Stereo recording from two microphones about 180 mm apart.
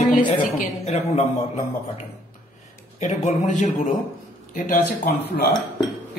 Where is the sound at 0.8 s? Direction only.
40° left (ahead or behind).